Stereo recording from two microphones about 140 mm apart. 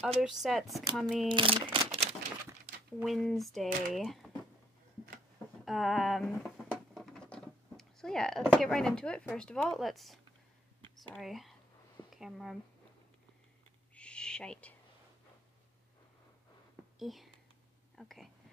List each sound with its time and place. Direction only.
0.2 s speech: centre (ahead or behind)
1.3 s speech: 40° right (ahead or behind)
3.0 s speech: centre (ahead or behind)
5.7 s speech: centre (ahead or behind)
13.9 s owl: 5° left (ahead or behind)
17.0 s speech: centre (ahead or behind)